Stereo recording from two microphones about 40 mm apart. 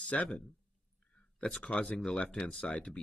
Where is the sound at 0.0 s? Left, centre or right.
Left.